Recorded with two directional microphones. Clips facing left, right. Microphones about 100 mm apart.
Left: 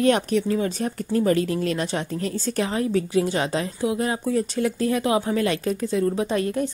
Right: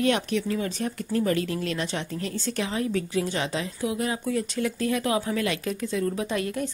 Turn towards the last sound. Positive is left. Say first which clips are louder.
# left 5 dB
turn(degrees=35)  # may be behind; listen again after turning